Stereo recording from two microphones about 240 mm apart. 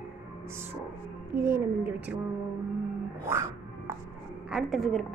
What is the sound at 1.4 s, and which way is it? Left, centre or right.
Speech, centre.